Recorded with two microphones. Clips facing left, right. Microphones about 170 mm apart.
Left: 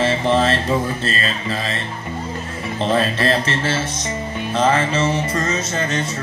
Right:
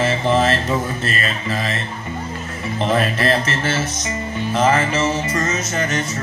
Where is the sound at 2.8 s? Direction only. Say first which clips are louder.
Even; 30° left (ahead or behind).